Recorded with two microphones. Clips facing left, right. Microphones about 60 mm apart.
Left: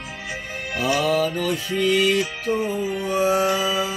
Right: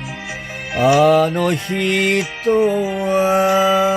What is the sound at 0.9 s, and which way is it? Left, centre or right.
Music, right.